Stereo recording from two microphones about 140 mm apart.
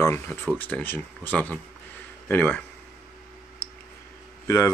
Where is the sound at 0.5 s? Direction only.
10° left (ahead or behind).